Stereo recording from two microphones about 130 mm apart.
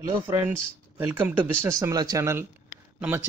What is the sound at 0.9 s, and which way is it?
A man's voice, 15° right (ahead or behind).